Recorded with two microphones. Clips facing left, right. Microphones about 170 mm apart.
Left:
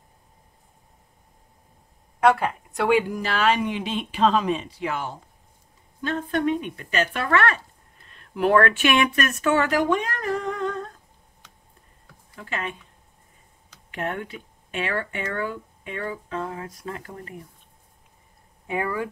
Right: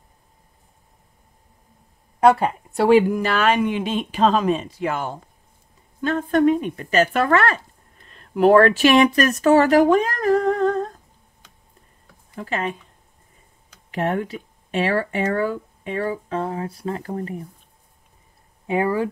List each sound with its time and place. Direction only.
2.1 s speech: 35° right (ahead or behind)
3.1 s speech: 55° right (ahead or behind)
12.4 s speech: 40° right (ahead or behind)
13.9 s speech: 35° right (ahead or behind)
18.7 s speech: 30° right (ahead or behind)